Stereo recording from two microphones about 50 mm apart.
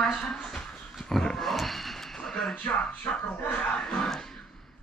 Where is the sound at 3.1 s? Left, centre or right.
Left.